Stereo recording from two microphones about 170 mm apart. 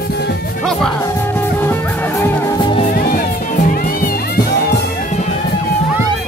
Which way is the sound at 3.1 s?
55° left (ahead or behind).